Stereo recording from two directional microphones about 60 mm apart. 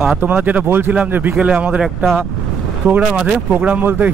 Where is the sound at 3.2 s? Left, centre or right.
Right.